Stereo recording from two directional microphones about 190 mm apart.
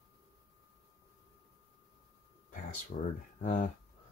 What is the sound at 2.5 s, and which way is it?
Speech, 40° left (ahead or behind).